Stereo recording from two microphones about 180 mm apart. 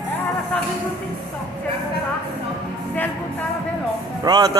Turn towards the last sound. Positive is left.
turn(degrees=-20)  # may be behind; listen again after turning